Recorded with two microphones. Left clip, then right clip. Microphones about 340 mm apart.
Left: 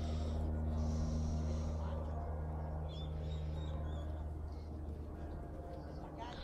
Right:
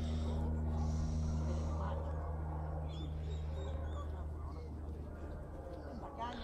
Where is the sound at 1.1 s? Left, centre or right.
Centre.